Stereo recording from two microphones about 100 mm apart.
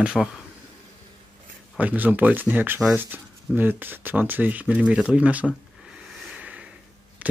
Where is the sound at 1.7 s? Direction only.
15° right (ahead or behind).